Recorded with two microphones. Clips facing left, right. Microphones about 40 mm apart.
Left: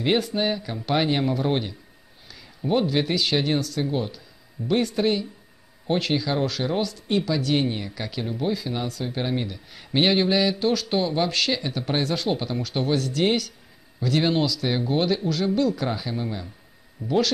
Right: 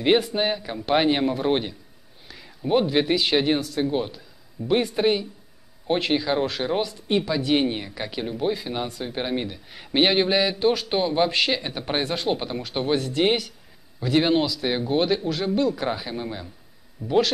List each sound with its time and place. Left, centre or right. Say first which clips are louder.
0.0 s speech: right 2 dB; centre